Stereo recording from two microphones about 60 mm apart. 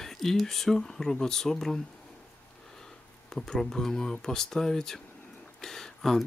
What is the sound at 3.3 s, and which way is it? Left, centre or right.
Speech, centre.